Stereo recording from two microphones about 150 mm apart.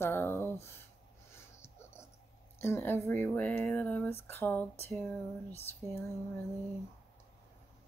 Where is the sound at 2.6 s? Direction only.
15° left (ahead or behind).